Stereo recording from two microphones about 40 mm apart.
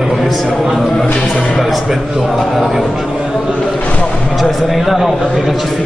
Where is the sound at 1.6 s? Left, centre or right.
Centre.